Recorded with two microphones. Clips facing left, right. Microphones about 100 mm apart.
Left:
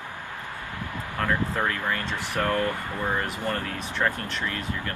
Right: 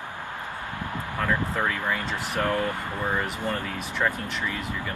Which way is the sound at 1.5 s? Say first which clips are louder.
Even; 15° right (ahead or behind).